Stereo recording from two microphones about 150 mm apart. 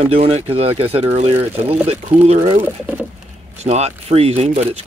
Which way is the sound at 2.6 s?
15° right (ahead or behind).